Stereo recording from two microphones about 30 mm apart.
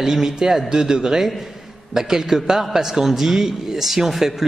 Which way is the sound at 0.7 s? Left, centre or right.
Right.